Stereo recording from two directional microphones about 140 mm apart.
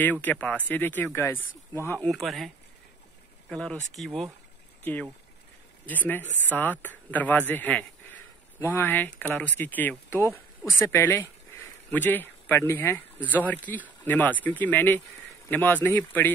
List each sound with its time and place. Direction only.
0.0 s speech: 10° left (ahead or behind)
5.9 s speech: 15° left (ahead or behind)